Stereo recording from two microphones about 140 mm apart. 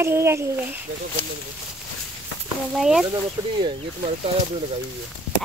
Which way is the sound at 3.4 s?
20° right (ahead or behind).